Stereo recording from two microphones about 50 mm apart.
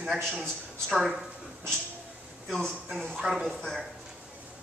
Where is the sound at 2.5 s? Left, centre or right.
Centre.